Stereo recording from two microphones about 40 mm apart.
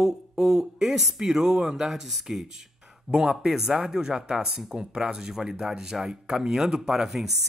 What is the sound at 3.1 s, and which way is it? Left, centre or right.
Speech, centre.